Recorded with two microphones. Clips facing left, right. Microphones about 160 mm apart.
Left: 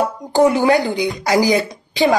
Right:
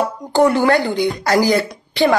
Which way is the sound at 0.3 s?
20° left (ahead or behind).